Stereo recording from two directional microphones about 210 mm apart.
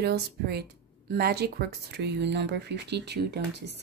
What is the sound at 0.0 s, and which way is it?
Speech, 50° right (ahead or behind).